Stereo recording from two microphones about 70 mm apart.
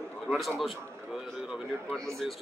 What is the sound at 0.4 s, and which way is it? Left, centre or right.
A man's voice, centre.